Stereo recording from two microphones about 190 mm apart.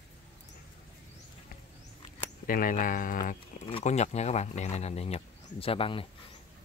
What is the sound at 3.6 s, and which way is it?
Speech, 35° left (ahead or behind).